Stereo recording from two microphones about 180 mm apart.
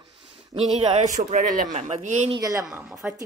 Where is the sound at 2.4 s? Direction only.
20° right (ahead or behind).